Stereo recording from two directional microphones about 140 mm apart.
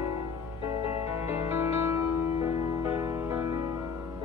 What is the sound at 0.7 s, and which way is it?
Music, 45° left (ahead or behind).